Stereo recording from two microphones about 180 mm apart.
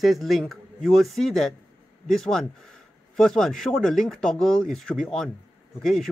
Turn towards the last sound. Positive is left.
turn(degrees=0)  # may be behind; listen again after turning